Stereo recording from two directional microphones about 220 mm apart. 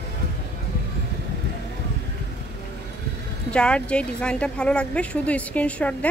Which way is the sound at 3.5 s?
5° left (ahead or behind).